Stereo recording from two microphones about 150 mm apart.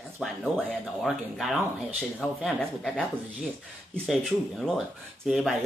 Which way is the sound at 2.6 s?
10° left (ahead or behind).